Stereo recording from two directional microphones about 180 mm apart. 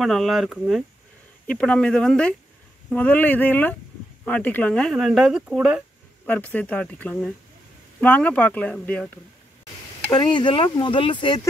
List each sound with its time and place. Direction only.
0.0 s speech: centre (ahead or behind)
6.2 s speech: 10° left (ahead or behind)
10.1 s speech: 25° left (ahead or behind)